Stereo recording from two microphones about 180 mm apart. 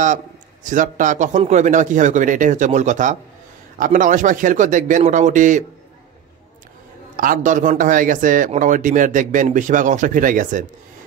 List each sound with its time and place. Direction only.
0.7 s a man's voice: 45° right (ahead or behind)
7.2 s a man's voice: 45° right (ahead or behind)